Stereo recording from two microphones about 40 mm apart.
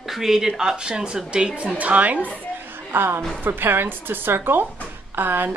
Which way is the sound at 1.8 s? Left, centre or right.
Right.